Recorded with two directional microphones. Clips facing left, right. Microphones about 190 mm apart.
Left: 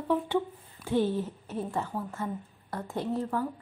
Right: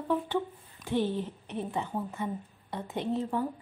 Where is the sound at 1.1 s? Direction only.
20° right (ahead or behind).